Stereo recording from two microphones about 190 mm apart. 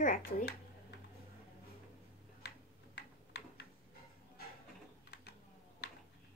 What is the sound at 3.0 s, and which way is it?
Tick-tock, 60° left (ahead or behind).